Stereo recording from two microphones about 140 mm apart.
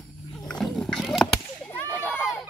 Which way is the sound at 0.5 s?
Centre (ahead or behind).